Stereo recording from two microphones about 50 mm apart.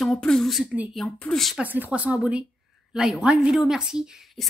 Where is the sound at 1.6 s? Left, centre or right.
Right.